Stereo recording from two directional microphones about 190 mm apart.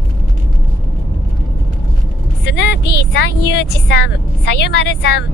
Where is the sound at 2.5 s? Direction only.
65° left (ahead or behind).